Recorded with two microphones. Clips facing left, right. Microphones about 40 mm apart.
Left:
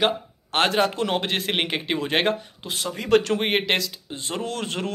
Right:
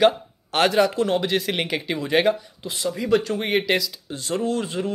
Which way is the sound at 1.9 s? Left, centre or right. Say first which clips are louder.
Right 3 dB; left.